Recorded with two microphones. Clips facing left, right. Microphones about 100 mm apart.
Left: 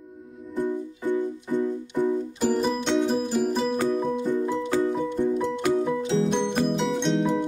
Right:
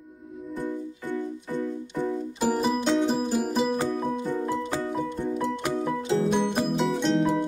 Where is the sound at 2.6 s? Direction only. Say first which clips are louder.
Right 2 dB; 5° right (ahead or behind).